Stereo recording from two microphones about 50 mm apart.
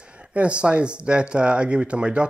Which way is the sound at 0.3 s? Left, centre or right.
Right.